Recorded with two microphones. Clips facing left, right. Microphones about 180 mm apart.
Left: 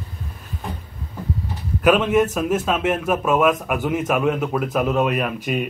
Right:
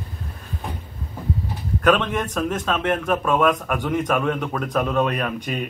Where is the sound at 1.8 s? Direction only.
5° left (ahead or behind).